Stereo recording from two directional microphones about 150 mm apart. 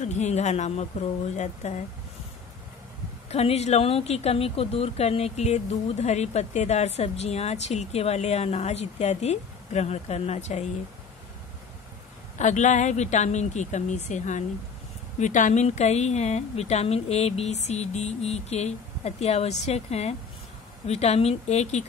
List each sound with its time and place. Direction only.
0.0 s a woman's voice: 50° left (ahead or behind)
3.3 s a woman's voice: 45° left (ahead or behind)
12.4 s a woman's voice: 55° left (ahead or behind)